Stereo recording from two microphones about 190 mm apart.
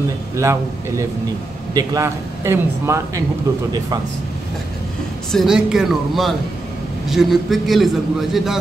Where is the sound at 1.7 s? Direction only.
15° right (ahead or behind).